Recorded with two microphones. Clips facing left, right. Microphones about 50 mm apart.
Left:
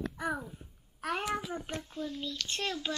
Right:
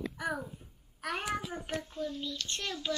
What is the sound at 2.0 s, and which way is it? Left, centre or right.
Speech, centre.